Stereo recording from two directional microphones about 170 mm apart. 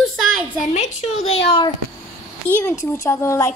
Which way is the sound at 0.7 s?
45° left (ahead or behind).